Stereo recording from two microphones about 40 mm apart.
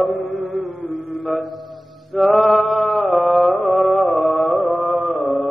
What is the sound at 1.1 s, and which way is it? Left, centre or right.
Mantra, left.